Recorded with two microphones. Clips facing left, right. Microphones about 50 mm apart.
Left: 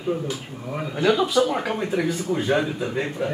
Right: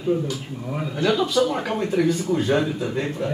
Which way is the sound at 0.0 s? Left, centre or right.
Centre.